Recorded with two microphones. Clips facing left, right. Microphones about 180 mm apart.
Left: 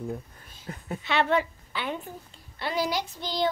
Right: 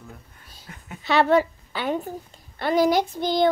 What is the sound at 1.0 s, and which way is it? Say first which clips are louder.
A woman's voice: right 6 dB; 40° right (ahead or behind).